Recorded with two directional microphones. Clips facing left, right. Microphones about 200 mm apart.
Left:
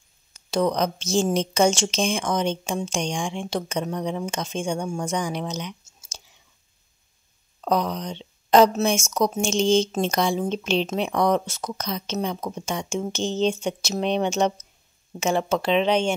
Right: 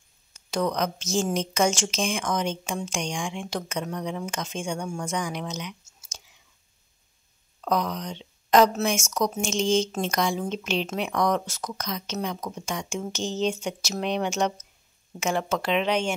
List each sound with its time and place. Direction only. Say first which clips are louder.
0.5 s speech: left 4 dB; 30° left (ahead or behind)
7.6 s speech: left 3 dB; 30° left (ahead or behind)